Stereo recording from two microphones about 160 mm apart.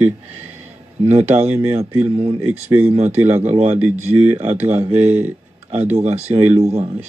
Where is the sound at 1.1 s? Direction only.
40° right (ahead or behind).